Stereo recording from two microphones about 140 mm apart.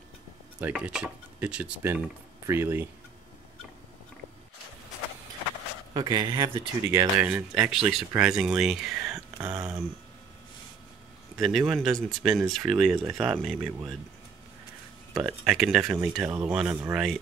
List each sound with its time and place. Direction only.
0.6 s speech: 10° right (ahead or behind)
5.9 s speech: 30° right (ahead or behind)
6.9 s speech: 20° right (ahead or behind)
7.2 s speech: 5° right (ahead or behind)
11.3 s speech: centre (ahead or behind)
15.1 s speech: 5° right (ahead or behind)